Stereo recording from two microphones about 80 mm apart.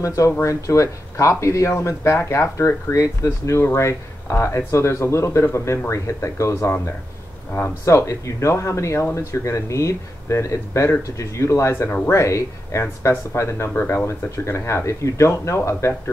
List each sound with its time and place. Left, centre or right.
0.0 s speech: left
7.8 s speech: left